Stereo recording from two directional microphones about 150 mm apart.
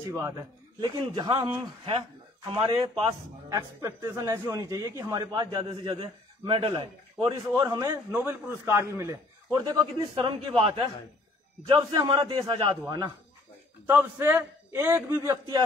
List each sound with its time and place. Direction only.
0.1 s a man's voice: 20° right (ahead or behind)
3.4 s a man's voice: 20° right (ahead or behind)
7.5 s a man's voice: 25° right (ahead or behind)
8.1 s a man's voice: 10° right (ahead or behind)
10.1 s a man's voice: 35° right (ahead or behind)
13.8 s a man's voice: 15° right (ahead or behind)